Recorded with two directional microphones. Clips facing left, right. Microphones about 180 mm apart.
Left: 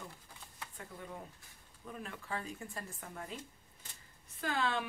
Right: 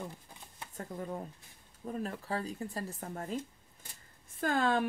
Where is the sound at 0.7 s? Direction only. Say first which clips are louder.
Right 9 dB; 40° right (ahead or behind).